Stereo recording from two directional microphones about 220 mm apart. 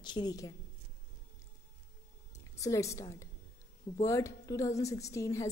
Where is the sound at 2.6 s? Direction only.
15° left (ahead or behind).